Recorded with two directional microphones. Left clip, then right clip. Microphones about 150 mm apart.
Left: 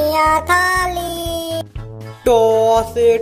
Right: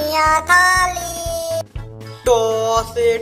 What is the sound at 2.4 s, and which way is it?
Music, 40° left (ahead or behind).